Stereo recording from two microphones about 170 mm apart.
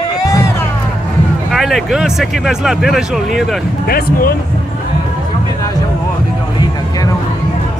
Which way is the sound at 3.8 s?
60° left (ahead or behind).